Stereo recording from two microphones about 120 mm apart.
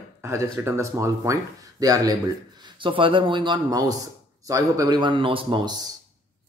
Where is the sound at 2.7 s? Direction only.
45° right (ahead or behind).